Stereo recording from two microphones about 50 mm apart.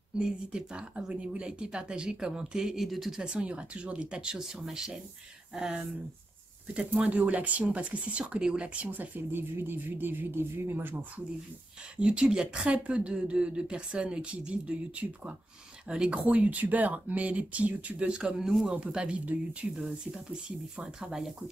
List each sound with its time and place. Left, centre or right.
0.2 s speech: centre
3.2 s speech: centre
7.0 s speech: right
9.3 s speech: right
12.0 s speech: right
18.4 s speech: centre
18.7 s speech: centre